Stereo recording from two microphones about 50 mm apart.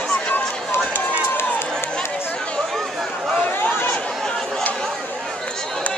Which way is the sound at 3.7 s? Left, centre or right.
Left.